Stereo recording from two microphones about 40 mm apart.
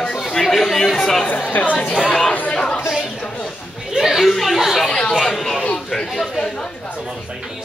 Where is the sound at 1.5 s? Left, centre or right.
Left.